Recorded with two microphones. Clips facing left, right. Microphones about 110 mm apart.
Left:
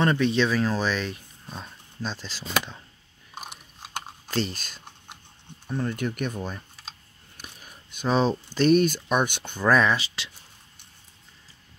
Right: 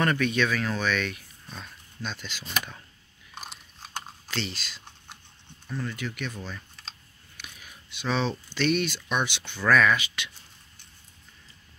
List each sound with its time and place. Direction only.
0.0 s speech: 25° left (ahead or behind)
4.3 s speech: 45° left (ahead or behind)
5.7 s speech: 25° left (ahead or behind)
5.9 s speech: 50° left (ahead or behind)
9.7 s speech: 30° left (ahead or behind)